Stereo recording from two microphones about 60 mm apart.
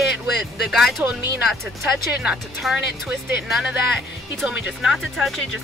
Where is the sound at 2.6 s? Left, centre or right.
Centre.